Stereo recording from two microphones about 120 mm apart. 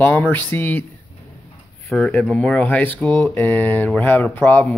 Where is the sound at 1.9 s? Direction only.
10° left (ahead or behind).